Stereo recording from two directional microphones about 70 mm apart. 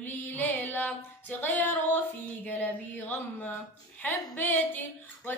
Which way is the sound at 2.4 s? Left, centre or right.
Left.